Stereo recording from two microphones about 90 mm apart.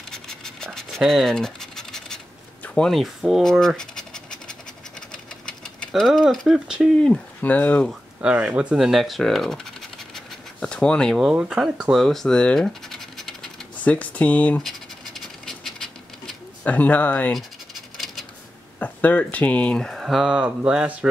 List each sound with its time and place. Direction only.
0.1 s scratch: 5° left (ahead or behind)
5.1 s engine: 10° left (ahead or behind)
6.3 s speech: 5° right (ahead or behind)
7.0 s speech: 15° left (ahead or behind)
8.2 s speech: 15° right (ahead or behind); by 11.3 s 5° left (ahead or behind)
11.3 s speech: 10° right (ahead or behind)
13.8 s speech: 15° left (ahead or behind)
14.6 s scratch: centre (ahead or behind)
16.6 s speech: 20° left (ahead or behind)
17.9 s a sound: centre (ahead or behind)
18.8 s speech: 20° left (ahead or behind); by 20.2 s centre (ahead or behind)
20.2 s speech: 15° right (ahead or behind)